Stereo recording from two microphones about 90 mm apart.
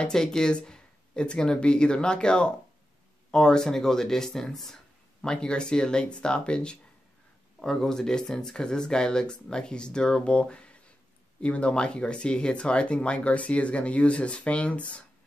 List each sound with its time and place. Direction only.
0.0 s speech: 5° left (ahead or behind)